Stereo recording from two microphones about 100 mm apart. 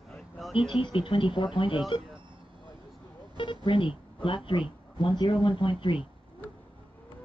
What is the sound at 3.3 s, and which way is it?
Speech, 55° left (ahead or behind).